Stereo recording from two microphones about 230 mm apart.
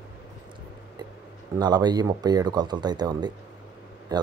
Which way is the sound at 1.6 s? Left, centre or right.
Centre.